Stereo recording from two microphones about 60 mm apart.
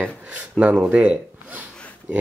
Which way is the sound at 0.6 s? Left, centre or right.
Right.